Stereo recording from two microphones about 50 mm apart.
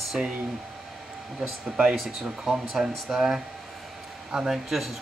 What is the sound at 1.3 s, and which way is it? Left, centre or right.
Speech, centre.